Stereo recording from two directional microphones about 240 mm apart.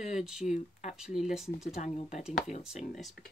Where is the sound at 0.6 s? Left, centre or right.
Left.